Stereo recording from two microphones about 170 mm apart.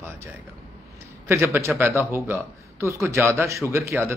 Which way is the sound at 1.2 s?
15° right (ahead or behind).